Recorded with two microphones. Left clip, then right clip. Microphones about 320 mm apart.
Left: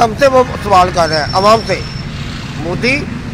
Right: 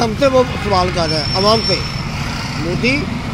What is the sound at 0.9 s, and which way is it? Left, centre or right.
Speech, left.